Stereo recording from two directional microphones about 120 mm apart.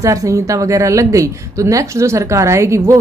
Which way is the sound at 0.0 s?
25° right (ahead or behind).